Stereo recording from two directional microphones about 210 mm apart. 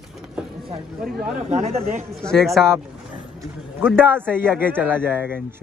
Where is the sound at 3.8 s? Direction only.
10° right (ahead or behind).